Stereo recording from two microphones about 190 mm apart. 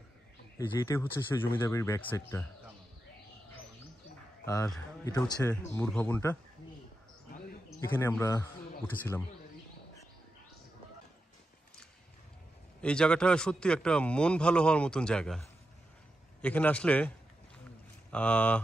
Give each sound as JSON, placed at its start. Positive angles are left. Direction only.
{"t": 0.6, "sound": "a man's voice", "side_deg": 15}
{"t": 5.0, "sound": "a man's voice", "side_deg": 15}
{"t": 7.3, "sound": "a sound", "side_deg": 50}
{"t": 7.9, "sound": "a man's voice", "side_deg": 10}
{"t": 12.8, "sound": "a man's voice", "side_deg": 5}
{"t": 18.1, "sound": "a man's voice", "side_deg": 5}